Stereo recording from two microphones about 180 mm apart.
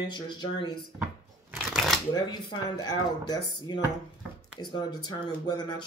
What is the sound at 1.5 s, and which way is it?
Shuffling cards, centre (ahead or behind).